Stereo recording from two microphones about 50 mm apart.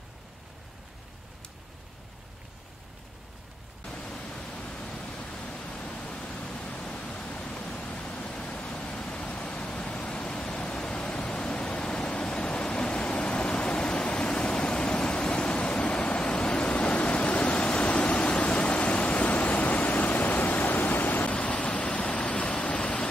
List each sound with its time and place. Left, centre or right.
3.8 s pink noise: centre
6.4 s pink noise: centre
6.7 s pink noise: left
7.6 s waterfall: left
8.2 s pink noise: centre
12.4 s a sound: centre
13.6 s waterfall: centre
14.8 s a sound: centre
15.4 s waves: left
17.7 s waterfall: left
19.1 s waves: left
20.1 s a sound: left
20.6 s pink noise: left
21.3 s vehicle: left